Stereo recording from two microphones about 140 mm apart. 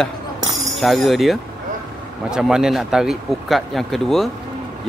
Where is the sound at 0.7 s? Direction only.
Centre (ahead or behind).